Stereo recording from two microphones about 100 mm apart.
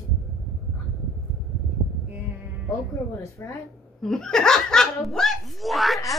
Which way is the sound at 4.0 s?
5° left (ahead or behind).